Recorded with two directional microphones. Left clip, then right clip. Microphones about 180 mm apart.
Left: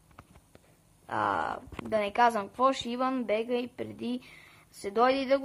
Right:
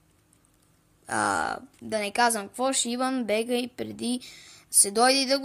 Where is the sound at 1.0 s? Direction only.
35° right (ahead or behind).